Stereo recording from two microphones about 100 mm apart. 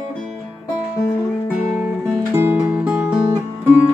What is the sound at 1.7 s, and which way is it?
Music, 20° right (ahead or behind).